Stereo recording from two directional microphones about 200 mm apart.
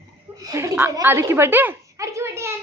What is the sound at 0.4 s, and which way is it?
A woman's voice, 15° right (ahead or behind).